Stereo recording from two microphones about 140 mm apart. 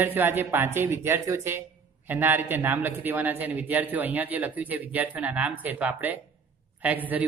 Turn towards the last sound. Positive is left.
turn(degrees=-10)  # may be behind; listen again after turning